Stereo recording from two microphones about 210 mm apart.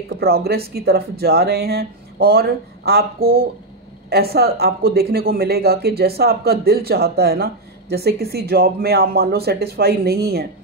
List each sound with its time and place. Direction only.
0.2 s speech: 50° right (ahead or behind)